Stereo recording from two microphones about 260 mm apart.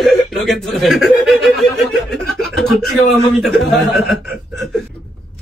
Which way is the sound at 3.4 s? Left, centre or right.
Centre.